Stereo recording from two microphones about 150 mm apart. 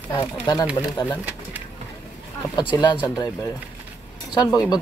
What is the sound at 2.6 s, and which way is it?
Speech, 30° left (ahead or behind).